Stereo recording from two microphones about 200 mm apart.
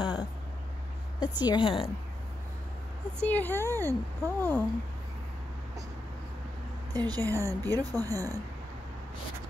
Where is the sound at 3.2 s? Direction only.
10° left (ahead or behind).